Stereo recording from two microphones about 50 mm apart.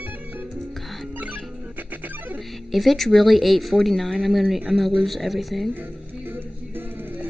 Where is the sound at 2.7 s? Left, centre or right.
Centre.